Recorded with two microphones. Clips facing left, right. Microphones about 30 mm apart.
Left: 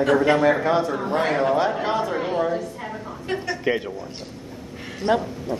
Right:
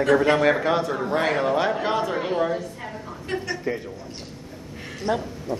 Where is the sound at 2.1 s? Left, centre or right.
Centre.